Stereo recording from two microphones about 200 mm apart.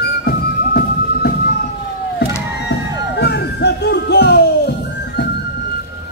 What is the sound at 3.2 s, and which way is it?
Music, 55° left (ahead or behind).